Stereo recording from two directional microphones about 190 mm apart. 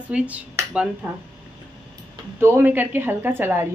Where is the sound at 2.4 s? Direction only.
10° right (ahead or behind).